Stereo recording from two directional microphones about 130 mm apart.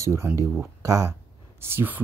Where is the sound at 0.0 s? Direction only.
20° right (ahead or behind).